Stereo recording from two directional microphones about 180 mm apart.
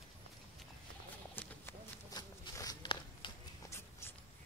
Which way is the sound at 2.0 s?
20° left (ahead or behind).